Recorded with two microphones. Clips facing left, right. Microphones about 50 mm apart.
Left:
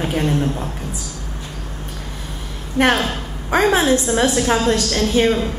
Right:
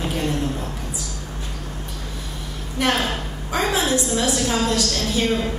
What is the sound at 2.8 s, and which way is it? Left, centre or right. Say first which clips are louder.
A woman's voice: left 5 dB; left.